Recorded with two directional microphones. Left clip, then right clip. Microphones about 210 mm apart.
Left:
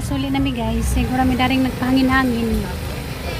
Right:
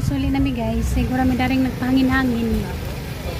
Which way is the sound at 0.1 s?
10° left (ahead or behind).